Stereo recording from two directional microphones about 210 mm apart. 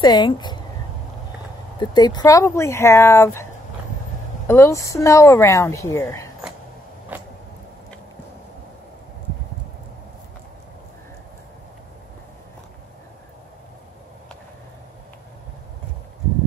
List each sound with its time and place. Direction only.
0.0 s speech: 20° left (ahead or behind)
1.8 s speech: 20° left (ahead or behind)
4.5 s speech: 15° left (ahead or behind)